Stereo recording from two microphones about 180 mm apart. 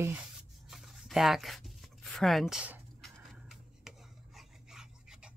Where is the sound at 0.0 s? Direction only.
5° right (ahead or behind).